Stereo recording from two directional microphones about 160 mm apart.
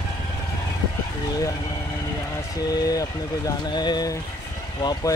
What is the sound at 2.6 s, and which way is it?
Speech, 25° left (ahead or behind).